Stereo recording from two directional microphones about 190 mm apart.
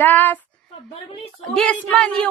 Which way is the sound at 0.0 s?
10° left (ahead or behind).